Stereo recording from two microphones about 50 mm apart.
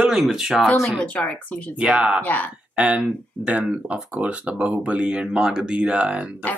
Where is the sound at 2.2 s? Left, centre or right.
Left.